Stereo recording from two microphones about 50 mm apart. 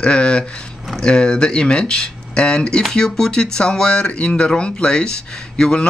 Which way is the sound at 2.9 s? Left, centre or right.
Centre.